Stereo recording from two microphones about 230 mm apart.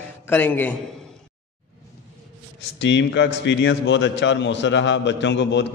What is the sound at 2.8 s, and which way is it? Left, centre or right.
A man's voice, left.